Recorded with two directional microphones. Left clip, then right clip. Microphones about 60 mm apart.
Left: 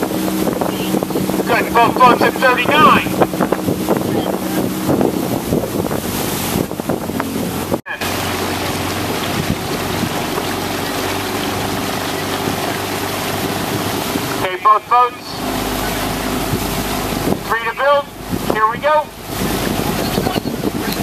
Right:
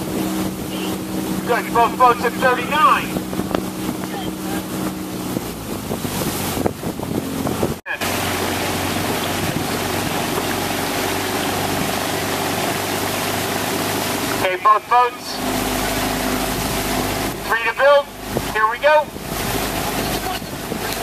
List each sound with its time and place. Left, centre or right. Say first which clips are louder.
1.5 s speech: left 3 dB; left
14.7 s vehicle: left 3 dB; right
17.5 s boat: right 1 dB; right